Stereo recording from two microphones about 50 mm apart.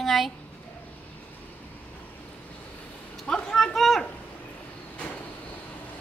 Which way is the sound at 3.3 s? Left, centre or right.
Centre.